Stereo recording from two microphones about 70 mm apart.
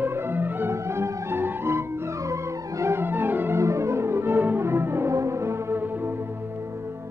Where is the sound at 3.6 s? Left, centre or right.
Right.